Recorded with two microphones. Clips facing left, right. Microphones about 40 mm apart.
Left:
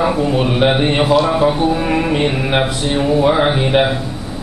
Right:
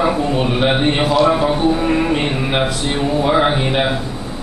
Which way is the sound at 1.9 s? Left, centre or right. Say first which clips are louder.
Left 1 dB; centre.